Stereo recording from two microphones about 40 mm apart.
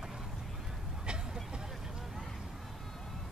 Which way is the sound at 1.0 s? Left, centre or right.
Right.